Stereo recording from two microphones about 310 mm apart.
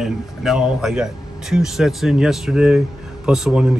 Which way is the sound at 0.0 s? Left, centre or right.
Centre.